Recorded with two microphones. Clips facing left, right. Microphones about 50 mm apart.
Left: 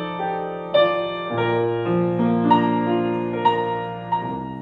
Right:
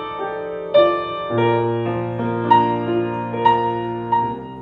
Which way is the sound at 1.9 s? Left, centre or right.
Centre.